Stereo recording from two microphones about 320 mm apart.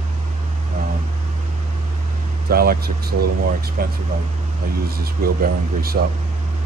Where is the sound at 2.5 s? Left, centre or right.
Right.